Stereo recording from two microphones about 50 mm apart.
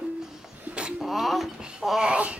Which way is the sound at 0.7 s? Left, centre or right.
Centre.